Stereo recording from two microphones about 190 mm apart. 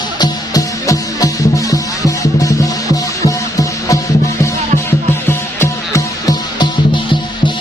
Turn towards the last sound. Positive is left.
turn(degrees=15)  # may be behind; listen again after turning